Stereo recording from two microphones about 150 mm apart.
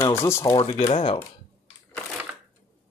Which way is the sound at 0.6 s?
45° left (ahead or behind).